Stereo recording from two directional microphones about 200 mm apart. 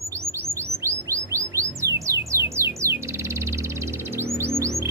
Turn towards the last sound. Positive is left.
turn(degrees=-15)  # may be behind; listen again after turning